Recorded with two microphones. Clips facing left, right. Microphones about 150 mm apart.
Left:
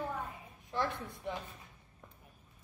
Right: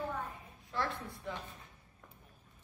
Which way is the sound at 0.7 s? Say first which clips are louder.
Left 2 dB; 20° left (ahead or behind).